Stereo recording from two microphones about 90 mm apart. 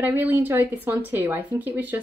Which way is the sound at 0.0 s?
20° right (ahead or behind).